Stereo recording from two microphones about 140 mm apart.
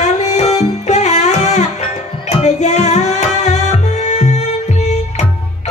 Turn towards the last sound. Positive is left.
turn(degrees=55)  # may be behind; listen again after turning